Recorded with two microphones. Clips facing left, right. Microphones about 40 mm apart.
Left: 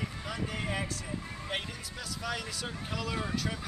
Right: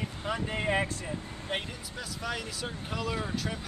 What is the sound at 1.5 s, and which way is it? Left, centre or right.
Speech, centre.